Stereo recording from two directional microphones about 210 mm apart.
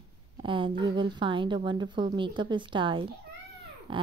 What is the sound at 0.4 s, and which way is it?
A woman's voice, 25° right (ahead or behind).